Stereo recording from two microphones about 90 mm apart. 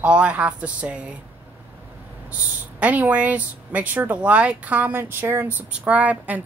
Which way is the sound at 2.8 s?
15° right (ahead or behind).